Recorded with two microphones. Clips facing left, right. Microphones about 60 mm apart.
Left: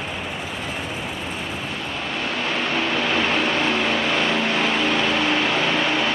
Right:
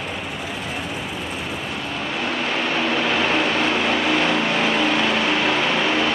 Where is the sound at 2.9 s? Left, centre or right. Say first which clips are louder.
Right 1 dB; centre.